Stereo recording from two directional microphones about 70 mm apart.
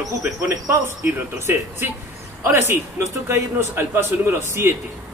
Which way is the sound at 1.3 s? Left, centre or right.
Right.